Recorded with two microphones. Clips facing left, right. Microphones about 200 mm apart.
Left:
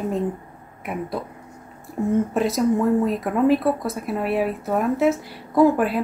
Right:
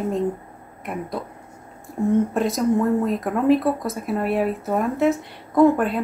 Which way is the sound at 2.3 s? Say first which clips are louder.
Even; centre (ahead or behind).